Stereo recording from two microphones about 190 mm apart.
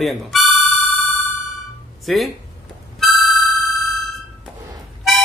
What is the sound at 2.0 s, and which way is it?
Speech, centre (ahead or behind).